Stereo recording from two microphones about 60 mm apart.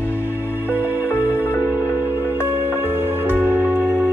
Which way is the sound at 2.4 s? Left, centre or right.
Right.